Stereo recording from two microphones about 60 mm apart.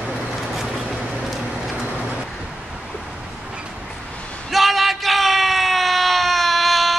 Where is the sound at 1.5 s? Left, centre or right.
Centre.